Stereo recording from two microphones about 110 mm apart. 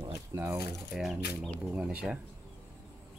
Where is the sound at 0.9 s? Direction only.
5° right (ahead or behind).